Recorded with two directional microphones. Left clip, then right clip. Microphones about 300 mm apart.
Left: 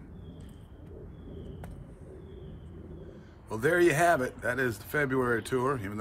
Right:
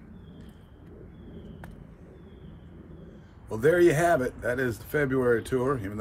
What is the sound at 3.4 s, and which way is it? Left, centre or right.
Speech, centre.